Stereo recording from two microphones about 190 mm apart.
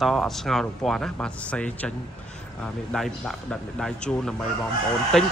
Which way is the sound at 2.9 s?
Centre (ahead or behind).